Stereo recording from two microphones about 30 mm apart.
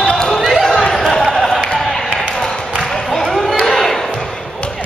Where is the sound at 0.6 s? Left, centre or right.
Centre.